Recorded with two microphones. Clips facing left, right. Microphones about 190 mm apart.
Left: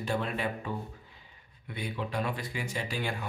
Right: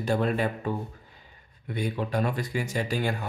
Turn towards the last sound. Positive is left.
turn(degrees=-40)  # may be behind; listen again after turning